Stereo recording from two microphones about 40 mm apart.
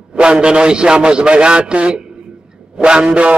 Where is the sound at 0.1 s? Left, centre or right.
Right.